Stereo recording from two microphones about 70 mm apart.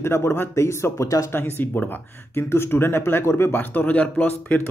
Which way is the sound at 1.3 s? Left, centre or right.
Left.